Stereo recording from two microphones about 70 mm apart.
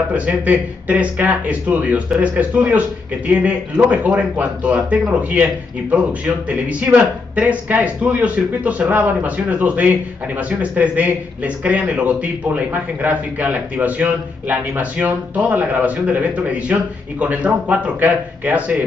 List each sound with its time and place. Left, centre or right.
0.1 s speech: right